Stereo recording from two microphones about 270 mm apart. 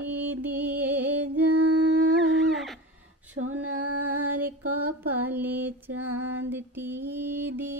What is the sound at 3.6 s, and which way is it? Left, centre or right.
Female singing, right.